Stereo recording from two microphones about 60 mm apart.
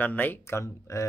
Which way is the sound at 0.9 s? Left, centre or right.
Left.